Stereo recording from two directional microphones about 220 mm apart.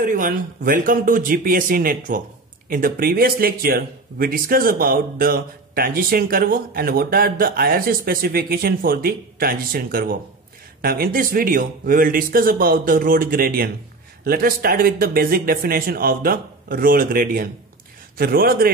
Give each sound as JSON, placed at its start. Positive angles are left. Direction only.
{"t": 0.0, "sound": "speech", "side_deg": -40}